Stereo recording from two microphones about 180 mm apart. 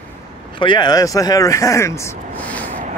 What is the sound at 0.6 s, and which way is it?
Speech, 25° left (ahead or behind).